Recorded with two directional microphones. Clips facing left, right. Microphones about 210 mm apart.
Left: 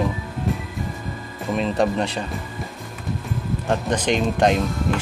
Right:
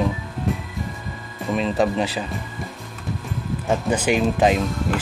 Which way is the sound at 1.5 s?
Centre (ahead or behind).